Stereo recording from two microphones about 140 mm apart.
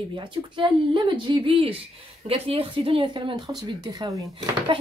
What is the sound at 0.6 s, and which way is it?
A woman's voice, 35° right (ahead or behind).